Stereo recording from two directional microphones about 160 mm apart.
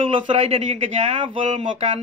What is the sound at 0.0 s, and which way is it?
A man's voice, 35° right (ahead or behind).